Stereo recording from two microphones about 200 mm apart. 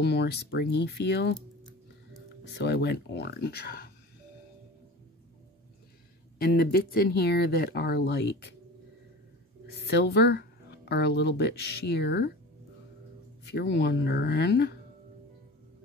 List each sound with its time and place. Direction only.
0.0 s speech: 55° left (ahead or behind)
2.5 s speech: 55° left (ahead or behind)
6.3 s speech: 50° left (ahead or behind)
9.8 s speech: 55° left (ahead or behind)
13.5 s speech: 55° left (ahead or behind)